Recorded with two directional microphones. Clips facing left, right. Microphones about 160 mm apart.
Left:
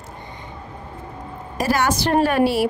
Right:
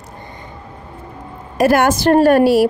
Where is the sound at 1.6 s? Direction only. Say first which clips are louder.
Right 7 dB; 55° right (ahead or behind).